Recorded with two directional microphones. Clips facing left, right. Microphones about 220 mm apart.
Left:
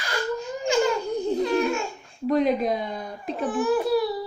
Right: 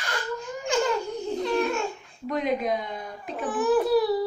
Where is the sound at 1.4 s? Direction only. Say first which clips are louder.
Even; 5° left (ahead or behind).